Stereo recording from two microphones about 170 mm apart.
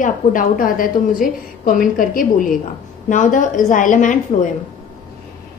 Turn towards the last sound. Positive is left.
turn(degrees=50)  # may be behind; listen again after turning